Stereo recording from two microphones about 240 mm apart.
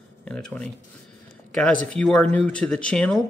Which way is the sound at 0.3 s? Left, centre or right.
Centre.